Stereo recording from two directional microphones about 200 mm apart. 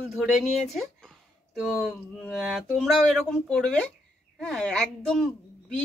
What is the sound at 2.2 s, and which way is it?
Speech, centre (ahead or behind).